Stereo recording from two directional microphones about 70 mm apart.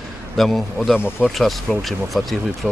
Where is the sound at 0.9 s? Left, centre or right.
Left.